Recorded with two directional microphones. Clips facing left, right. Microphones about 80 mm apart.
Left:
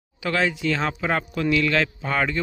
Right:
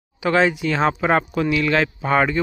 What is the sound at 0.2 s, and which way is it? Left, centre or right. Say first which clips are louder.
Speech: right 5 dB; right.